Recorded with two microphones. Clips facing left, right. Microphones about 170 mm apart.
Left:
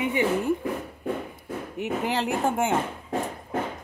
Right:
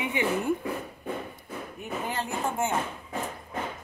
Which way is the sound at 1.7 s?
80° left.